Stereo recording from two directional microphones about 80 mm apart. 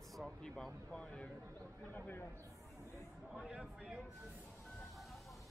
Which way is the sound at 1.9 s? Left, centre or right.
Left.